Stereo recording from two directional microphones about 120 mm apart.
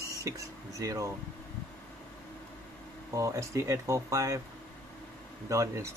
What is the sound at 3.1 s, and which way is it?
Speech, 25° right (ahead or behind).